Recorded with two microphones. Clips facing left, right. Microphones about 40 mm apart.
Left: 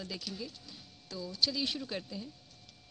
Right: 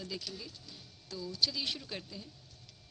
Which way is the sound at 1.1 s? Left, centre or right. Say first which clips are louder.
Even; left.